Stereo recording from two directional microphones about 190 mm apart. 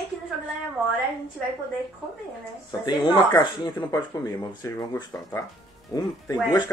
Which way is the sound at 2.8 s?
15° left (ahead or behind).